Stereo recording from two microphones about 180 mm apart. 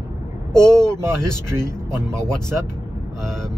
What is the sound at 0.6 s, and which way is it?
Speech, 5° left (ahead or behind).